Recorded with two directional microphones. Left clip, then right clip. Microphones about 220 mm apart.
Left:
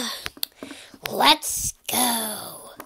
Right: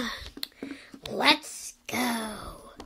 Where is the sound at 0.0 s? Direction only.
Centre (ahead or behind).